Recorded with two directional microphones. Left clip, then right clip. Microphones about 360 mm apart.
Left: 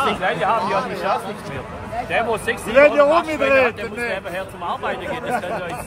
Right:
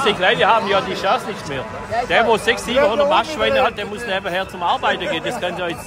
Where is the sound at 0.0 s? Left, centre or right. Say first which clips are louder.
Right 4 dB; centre.